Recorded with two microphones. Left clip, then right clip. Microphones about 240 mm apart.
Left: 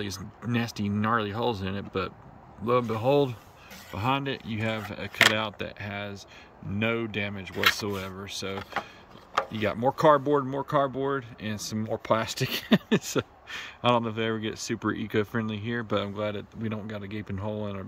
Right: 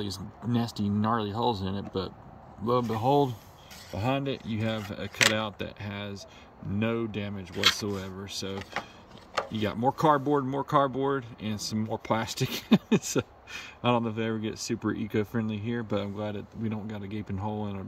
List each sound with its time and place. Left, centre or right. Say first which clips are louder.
0.6 s speech: left 1 dB; left
4.0 s speech: left 2 dB; centre
9.6 s speech: left 1 dB; centre